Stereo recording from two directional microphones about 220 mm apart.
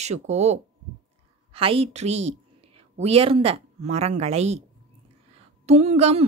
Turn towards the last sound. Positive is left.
turn(degrees=-30)  # may be behind; listen again after turning